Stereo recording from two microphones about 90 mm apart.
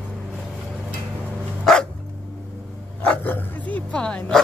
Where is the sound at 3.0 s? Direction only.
20° left (ahead or behind).